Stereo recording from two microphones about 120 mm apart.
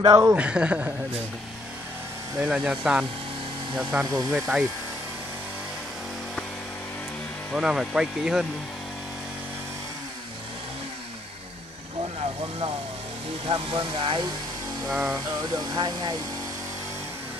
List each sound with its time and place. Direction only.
0.2 s a man's voice: 20° right (ahead or behind)
2.3 s speech: 10° right (ahead or behind)
7.5 s speech: 5° right (ahead or behind)
12.2 s speech: 50° right (ahead or behind)
15.0 s speech: 15° right (ahead or behind)
15.5 s speech: 35° right (ahead or behind)